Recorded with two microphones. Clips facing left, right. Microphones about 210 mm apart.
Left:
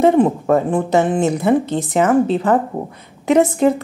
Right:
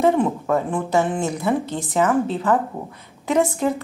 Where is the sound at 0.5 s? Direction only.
45° left (ahead or behind).